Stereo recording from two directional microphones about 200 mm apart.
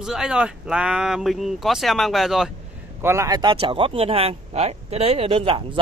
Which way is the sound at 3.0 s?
15° right (ahead or behind).